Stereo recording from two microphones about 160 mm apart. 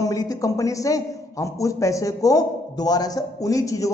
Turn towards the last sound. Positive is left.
turn(degrees=20)  # may be behind; listen again after turning